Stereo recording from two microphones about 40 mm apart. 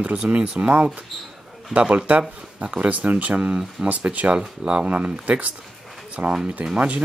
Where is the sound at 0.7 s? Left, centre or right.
Right.